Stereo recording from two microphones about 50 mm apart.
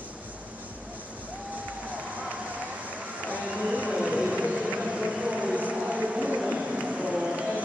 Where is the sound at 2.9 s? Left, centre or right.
Right.